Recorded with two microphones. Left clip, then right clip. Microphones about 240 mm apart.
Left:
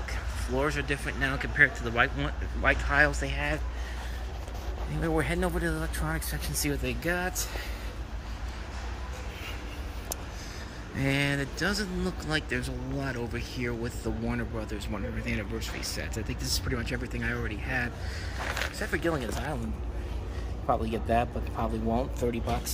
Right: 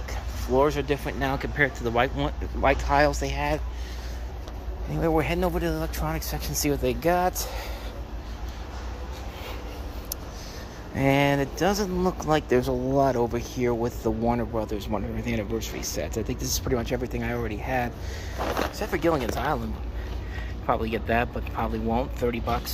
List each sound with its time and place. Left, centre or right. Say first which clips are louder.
0.5 s speech: right 7 dB; centre
5.0 s speech: right 5 dB; centre
11.0 s speech: right 7 dB; centre
16.0 s speech: right 6 dB; centre
18.4 s speech: right 6 dB; right
18.8 s speech: right 6 dB; centre
20.6 s speech: right 3 dB; centre